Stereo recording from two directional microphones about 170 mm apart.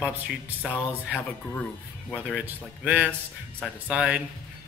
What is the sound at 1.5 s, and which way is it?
Speech, 5° left (ahead or behind).